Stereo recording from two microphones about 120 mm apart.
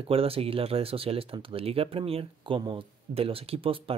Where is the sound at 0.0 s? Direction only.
50° right (ahead or behind).